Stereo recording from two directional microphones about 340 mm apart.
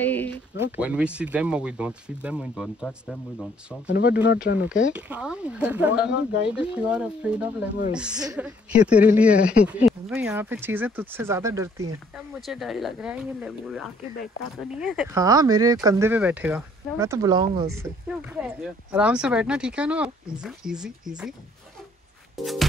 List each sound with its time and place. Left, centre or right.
0.0 s a sound: centre
0.7 s a woman's voice: centre
3.8 s speech: left
4.9 s a woman's voice: centre
6.0 s speech: left
6.5 s a woman's voice: centre
22.4 s a woman's voice: centre